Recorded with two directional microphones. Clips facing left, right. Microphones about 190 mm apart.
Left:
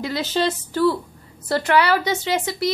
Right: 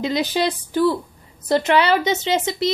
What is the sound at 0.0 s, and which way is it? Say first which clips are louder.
A woman's voice: right 2 dB; 15° right (ahead or behind).